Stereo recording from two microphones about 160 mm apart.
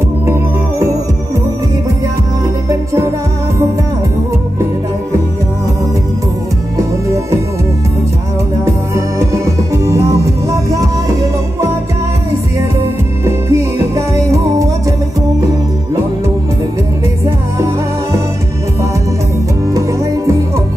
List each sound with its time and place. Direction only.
8.9 s music: 20° right (ahead or behind)
13.2 s music: 20° right (ahead or behind)